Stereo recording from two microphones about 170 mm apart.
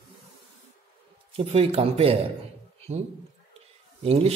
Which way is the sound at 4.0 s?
35° right (ahead or behind).